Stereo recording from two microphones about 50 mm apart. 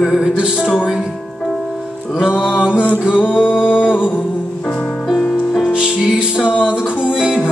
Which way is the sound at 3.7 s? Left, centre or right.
Left.